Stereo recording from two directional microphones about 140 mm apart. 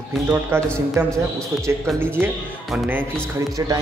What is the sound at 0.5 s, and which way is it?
A man's voice, 15° right (ahead or behind).